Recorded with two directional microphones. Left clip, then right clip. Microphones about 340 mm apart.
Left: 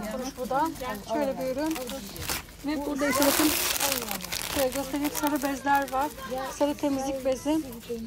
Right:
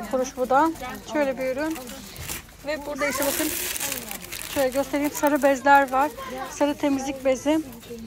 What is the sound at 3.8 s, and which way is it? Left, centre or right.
Crumpling, left.